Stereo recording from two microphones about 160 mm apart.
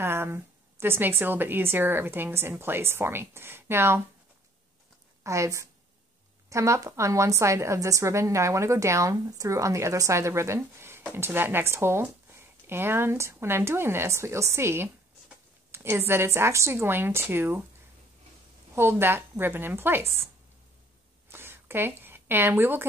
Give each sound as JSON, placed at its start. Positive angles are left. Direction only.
{"t": 0.0, "sound": "a woman's voice", "side_deg": -15}
{"t": 5.2, "sound": "a woman's voice", "side_deg": -20}
{"t": 18.8, "sound": "a woman's voice", "side_deg": -15}
{"t": 21.3, "sound": "a sound", "side_deg": -15}